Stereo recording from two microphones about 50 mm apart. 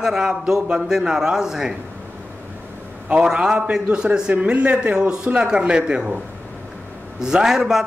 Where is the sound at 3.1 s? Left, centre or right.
Centre.